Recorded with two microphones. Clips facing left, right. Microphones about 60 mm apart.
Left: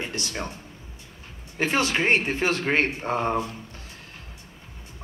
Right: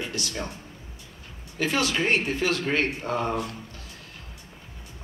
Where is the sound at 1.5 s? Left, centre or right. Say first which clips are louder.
Left 2 dB; left.